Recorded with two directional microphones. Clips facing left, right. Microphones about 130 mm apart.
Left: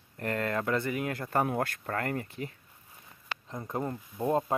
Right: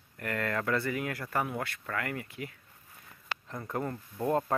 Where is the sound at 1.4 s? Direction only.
45° left (ahead or behind).